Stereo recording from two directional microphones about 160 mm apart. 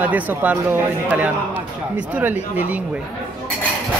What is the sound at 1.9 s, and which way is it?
Speech, 10° right (ahead or behind).